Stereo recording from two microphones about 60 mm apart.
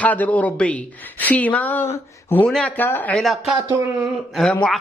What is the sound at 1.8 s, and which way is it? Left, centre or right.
Speech, left.